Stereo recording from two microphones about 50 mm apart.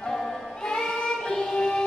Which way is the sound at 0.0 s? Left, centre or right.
Centre.